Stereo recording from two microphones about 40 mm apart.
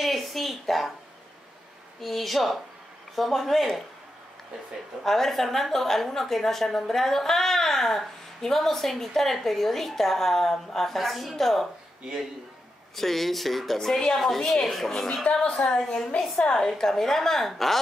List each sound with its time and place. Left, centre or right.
0.0 s a woman's voice: centre
2.0 s a woman's voice: centre
5.0 s a woman's voice: centre
12.9 s a woman's voice: centre
15.5 s a woman's voice: centre